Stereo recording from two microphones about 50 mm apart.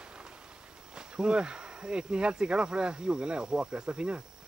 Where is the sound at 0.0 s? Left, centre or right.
Centre.